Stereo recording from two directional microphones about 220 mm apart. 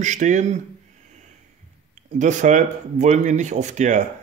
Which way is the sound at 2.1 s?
35° right (ahead or behind).